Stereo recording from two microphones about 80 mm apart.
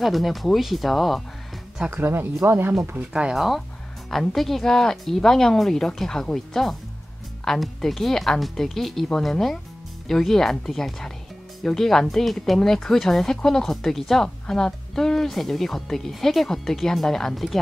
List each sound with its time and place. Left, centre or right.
0.0 s speech: centre
2.0 s speech: right
3.0 s speech: centre